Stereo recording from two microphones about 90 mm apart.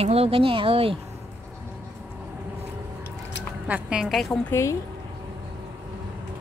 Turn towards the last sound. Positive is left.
turn(degrees=30)  # may be behind; listen again after turning